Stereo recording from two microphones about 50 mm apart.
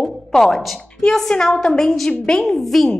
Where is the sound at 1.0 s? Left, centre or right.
Centre.